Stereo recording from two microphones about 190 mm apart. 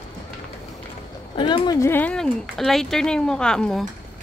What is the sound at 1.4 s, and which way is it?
Speech, 20° left (ahead or behind).